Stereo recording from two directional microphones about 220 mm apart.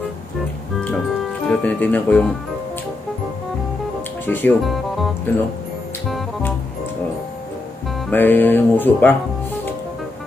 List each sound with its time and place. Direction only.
1.5 s speech: 5° left (ahead or behind)
4.3 s speech: 10° left (ahead or behind)
6.0 s music: centre (ahead or behind)
8.1 s speech: 10° left (ahead or behind)